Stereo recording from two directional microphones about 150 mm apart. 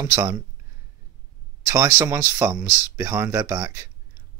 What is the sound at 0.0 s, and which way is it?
Speech, 20° right (ahead or behind).